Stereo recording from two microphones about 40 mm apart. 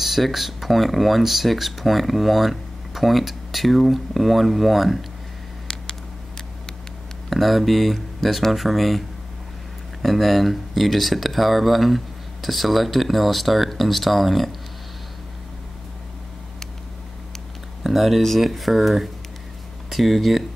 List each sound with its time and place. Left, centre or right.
0.0 s speech: centre
5.7 s a sound: centre
7.2 s speech: centre
10.0 s speech: centre
17.8 s speech: centre